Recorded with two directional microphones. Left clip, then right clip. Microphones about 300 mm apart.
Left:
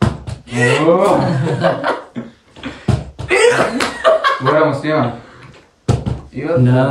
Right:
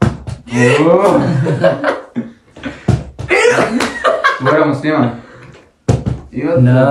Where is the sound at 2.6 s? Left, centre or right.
Centre.